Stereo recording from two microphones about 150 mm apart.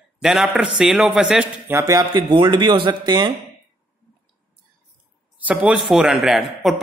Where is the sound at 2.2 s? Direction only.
35° right (ahead or behind).